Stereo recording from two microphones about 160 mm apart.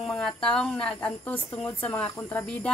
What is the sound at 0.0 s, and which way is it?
Speech, 5° left (ahead or behind).